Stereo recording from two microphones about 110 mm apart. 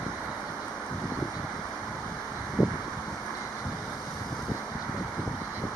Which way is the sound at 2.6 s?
10° right (ahead or behind).